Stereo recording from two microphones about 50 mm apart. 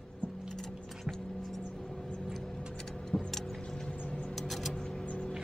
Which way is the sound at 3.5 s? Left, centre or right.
Centre.